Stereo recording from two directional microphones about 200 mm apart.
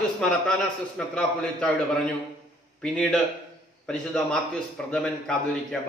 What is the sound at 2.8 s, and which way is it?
A man's voice, 5° left (ahead or behind).